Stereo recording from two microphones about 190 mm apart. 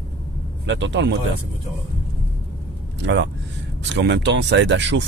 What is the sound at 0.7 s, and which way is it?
Speech, 75° right (ahead or behind).